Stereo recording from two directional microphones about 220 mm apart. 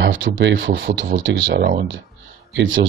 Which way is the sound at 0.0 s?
60° right (ahead or behind).